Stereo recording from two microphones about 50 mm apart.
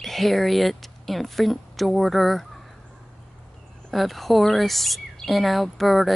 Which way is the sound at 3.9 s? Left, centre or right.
Centre.